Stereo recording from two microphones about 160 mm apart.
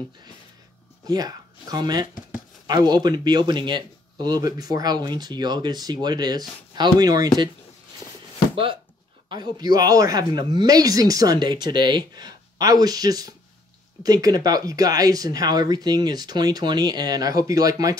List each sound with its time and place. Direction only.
1.0 s speech: 25° right (ahead or behind)
9.3 s speech: 25° right (ahead or behind)